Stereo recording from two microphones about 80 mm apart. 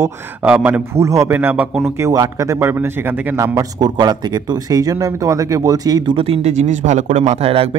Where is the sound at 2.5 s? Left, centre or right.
Right.